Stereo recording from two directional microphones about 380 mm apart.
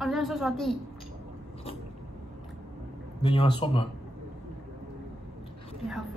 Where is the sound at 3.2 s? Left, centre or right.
Centre.